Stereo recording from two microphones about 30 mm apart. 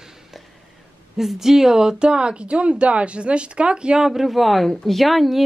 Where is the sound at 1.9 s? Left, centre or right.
Right.